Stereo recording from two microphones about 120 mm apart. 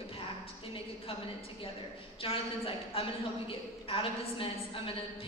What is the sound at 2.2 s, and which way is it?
A woman's voice, 50° left (ahead or behind).